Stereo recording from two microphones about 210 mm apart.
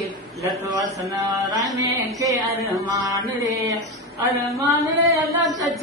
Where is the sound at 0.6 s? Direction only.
15° right (ahead or behind).